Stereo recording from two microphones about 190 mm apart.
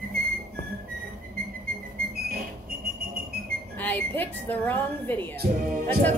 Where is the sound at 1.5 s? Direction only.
50° right (ahead or behind).